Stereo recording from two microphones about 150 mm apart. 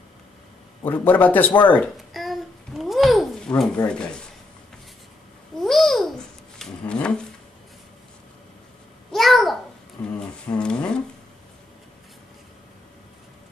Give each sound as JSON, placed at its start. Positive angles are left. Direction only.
{"t": 0.8, "sound": "a man's voice", "side_deg": 10}
{"t": 2.0, "sound": "babbling", "side_deg": 0}
{"t": 5.6, "sound": "babbling", "side_deg": 0}
{"t": 9.1, "sound": "babbling", "side_deg": 0}
{"t": 10.0, "sound": "a sound", "side_deg": 10}